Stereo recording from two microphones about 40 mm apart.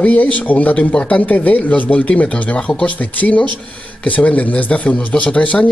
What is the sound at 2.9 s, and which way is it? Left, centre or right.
Speech, left.